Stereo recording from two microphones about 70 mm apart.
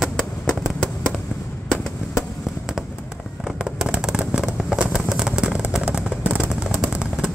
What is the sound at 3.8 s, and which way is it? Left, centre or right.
Vehicle, centre.